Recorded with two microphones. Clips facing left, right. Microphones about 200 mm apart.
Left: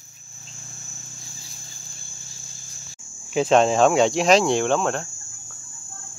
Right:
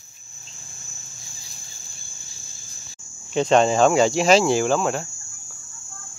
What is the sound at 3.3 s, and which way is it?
Speech, centre (ahead or behind).